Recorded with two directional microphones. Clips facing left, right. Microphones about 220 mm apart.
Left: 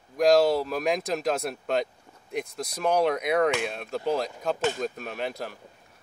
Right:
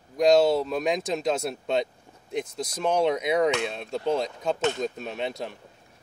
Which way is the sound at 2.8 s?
Centre (ahead or behind).